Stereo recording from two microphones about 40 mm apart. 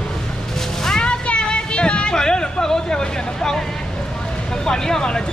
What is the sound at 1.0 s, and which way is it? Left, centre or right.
Speech, left.